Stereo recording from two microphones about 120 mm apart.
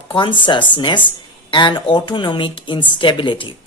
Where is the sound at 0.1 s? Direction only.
40° left (ahead or behind).